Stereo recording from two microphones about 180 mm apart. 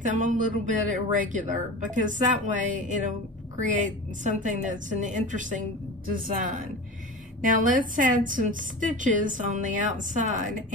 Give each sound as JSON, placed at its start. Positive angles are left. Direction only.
{"t": 0.0, "sound": "a woman's voice", "side_deg": -45}
{"t": 7.4, "sound": "a woman's voice", "side_deg": -45}